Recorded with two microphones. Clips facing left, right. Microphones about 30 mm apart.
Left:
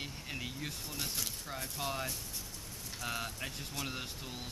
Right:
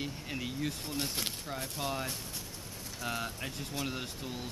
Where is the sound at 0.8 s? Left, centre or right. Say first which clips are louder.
Right 4 dB; right.